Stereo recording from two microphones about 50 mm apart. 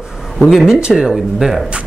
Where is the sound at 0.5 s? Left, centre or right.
Centre.